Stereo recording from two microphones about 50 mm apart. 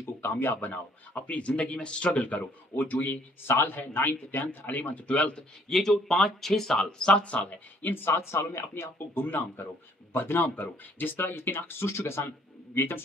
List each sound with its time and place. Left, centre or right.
0.2 s a man's voice: left
5.7 s speech: centre
7.1 s speech: left
7.8 s speech: left
8.9 s a man's voice: left
11.9 s speech: left
12.7 s speech: left